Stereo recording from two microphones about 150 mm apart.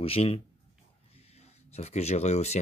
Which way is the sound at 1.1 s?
45° left (ahead or behind).